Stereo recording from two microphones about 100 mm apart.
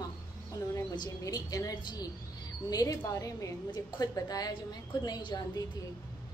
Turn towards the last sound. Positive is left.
turn(degrees=45)  # may be behind; listen again after turning